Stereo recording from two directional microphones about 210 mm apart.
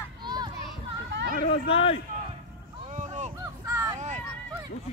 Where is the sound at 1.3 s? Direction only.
25° left (ahead or behind).